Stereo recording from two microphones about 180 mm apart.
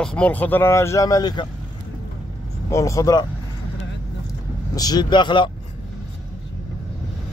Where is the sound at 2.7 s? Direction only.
15° left (ahead or behind).